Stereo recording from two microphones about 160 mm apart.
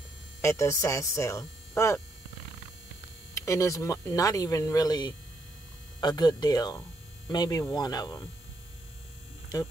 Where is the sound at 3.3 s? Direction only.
20° left (ahead or behind).